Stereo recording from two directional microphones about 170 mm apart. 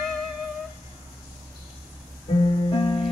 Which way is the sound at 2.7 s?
25° left (ahead or behind).